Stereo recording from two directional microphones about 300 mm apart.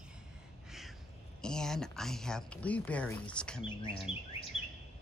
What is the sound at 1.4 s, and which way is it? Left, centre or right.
Speech, centre.